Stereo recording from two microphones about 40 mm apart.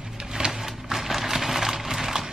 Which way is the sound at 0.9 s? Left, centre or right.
Centre.